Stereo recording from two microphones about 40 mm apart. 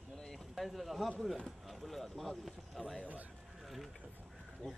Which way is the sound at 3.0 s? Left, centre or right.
Right.